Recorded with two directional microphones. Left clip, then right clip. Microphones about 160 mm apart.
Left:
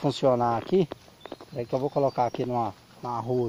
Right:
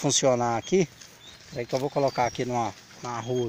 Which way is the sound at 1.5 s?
15° left (ahead or behind).